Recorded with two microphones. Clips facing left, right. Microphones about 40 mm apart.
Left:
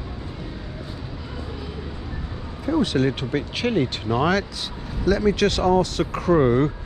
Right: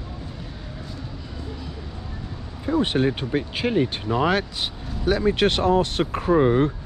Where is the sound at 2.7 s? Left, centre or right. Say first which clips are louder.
Even; right.